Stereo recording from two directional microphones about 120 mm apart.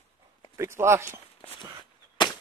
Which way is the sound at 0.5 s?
25° right (ahead or behind).